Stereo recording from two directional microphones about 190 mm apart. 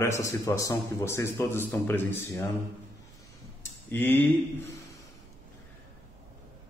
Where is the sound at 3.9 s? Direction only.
10° left (ahead or behind).